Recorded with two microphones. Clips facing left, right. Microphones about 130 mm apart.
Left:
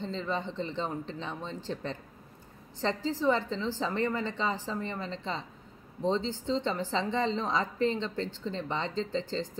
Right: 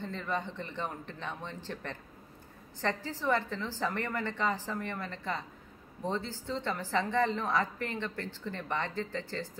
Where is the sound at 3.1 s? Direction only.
15° left (ahead or behind).